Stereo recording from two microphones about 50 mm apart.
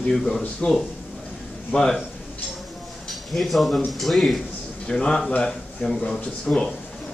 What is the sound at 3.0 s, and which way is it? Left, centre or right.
Speech, centre.